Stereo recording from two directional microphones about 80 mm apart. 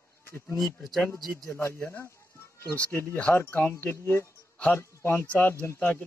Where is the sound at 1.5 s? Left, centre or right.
Left.